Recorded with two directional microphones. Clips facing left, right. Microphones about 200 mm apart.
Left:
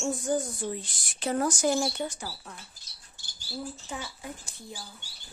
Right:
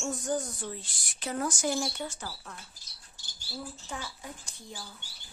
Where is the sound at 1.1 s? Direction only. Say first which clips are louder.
Left 5 dB; 35° left (ahead or behind).